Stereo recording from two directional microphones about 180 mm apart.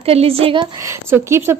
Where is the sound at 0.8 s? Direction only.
15° right (ahead or behind).